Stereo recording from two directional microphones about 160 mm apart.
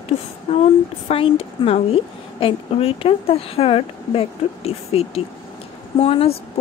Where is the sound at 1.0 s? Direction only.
35° left (ahead or behind).